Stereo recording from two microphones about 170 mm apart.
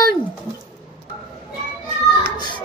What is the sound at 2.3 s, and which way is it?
Children playing, 25° left (ahead or behind).